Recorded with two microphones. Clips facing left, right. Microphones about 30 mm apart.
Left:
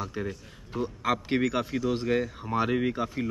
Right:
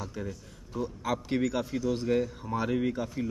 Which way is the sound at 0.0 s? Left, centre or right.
Left.